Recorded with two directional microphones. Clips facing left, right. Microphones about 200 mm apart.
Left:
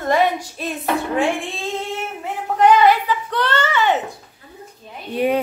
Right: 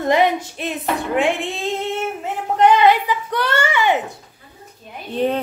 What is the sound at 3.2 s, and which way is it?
Speech, 10° right (ahead or behind).